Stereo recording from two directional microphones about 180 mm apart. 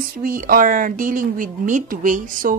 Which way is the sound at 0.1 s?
50° right (ahead or behind).